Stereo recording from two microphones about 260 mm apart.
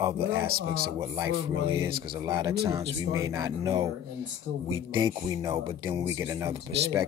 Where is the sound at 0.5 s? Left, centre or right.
Right.